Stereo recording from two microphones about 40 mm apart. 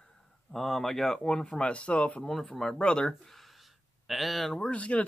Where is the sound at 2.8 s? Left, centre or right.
Left.